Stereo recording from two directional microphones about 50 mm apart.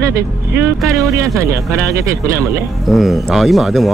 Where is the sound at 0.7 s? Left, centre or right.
Right.